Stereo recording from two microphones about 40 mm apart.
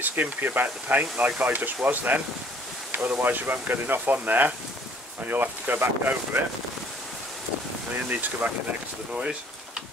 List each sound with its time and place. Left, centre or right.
0.2 s speech: right
7.9 s speech: right
9.1 s speech: right